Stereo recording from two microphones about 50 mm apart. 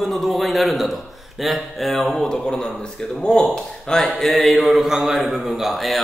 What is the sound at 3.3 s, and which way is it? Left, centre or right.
A man's voice, centre.